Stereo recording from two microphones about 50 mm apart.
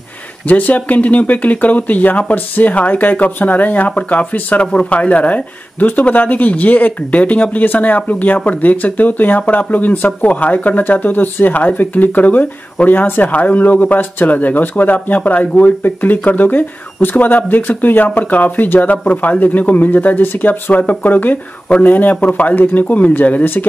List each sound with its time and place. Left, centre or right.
0.5 s speech: left
13.3 s speech: left